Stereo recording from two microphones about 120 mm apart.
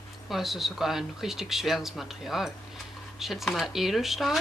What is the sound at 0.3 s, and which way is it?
Speech, centre (ahead or behind).